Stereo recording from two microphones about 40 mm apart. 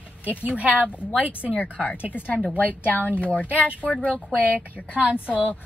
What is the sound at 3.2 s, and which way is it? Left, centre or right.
Speech, left.